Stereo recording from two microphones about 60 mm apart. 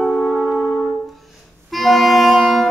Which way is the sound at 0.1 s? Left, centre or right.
Left.